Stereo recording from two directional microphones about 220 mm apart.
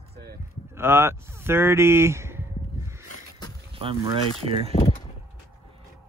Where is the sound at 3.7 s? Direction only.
25° right (ahead or behind).